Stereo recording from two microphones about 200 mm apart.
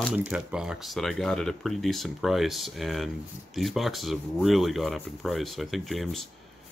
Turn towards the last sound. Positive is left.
turn(degrees=0)  # may be behind; listen again after turning